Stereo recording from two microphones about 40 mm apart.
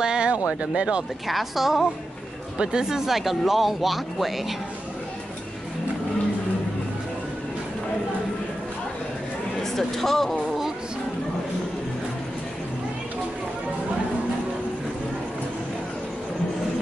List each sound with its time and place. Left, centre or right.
0.0 s speech: right
1.2 s speech: centre
2.6 s speech: centre
9.6 s speech: centre